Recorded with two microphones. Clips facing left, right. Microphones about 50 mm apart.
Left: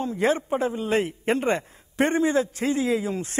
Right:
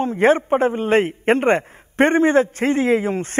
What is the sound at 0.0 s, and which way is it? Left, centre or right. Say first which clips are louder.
A man's voice: right 7 dB; right.